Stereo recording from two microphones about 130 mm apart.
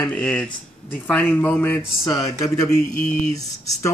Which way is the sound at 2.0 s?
25° left (ahead or behind).